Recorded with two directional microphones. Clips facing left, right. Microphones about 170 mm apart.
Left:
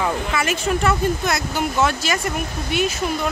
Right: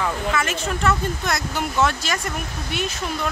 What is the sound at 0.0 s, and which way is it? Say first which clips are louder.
Speech: left 1 dB; 10° left (ahead or behind).